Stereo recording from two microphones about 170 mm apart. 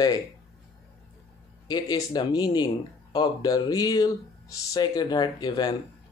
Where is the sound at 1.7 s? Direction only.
25° left (ahead or behind).